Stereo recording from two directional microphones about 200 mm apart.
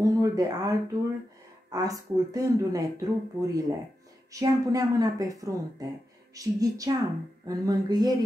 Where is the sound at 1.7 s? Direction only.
20° right (ahead or behind).